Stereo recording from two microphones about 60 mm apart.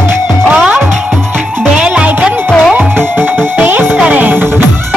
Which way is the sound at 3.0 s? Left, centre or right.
Right.